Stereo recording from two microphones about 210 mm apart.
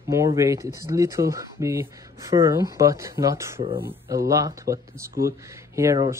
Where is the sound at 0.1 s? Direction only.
15° right (ahead or behind).